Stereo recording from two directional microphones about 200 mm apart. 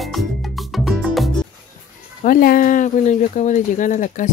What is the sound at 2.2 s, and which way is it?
Speech, 45° left (ahead or behind).